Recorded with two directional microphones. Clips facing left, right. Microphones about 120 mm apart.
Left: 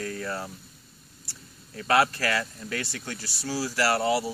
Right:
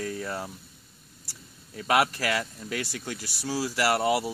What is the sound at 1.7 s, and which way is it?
Speech, 15° right (ahead or behind).